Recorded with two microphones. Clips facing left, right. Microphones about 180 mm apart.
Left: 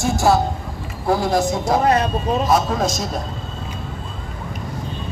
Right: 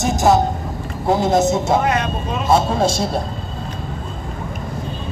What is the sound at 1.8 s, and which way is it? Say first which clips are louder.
Speech: left 2 dB; 35° left (ahead or behind).